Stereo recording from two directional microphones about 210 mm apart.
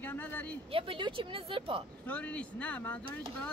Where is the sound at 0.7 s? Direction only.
25° right (ahead or behind).